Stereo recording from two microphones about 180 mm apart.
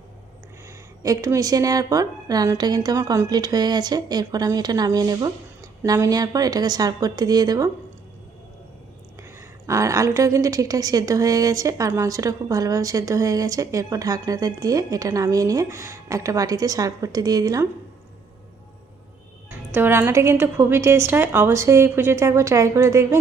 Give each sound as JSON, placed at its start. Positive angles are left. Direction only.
{"t": 1.0, "sound": "a woman's voice", "side_deg": -20}
{"t": 9.7, "sound": "a woman's voice", "side_deg": -15}
{"t": 19.7, "sound": "a woman's voice", "side_deg": -10}